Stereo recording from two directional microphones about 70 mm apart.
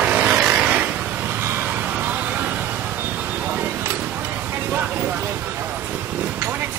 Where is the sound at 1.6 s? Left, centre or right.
Right.